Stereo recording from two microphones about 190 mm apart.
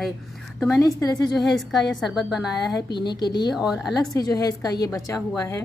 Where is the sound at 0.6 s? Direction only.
10° left (ahead or behind).